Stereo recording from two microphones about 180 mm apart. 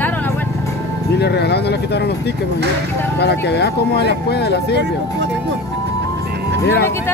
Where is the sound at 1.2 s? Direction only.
65° left (ahead or behind).